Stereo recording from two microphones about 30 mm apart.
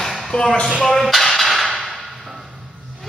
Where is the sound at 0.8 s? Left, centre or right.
Centre.